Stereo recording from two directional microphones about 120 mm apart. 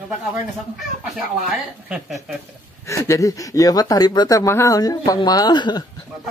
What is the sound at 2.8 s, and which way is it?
Speech, 25° left (ahead or behind).